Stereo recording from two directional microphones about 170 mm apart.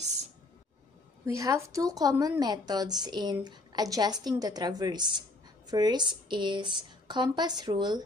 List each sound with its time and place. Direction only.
1.2 s speech: 20° right (ahead or behind)